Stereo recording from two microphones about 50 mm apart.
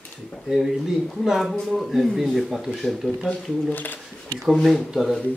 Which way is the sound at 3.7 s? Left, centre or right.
Left.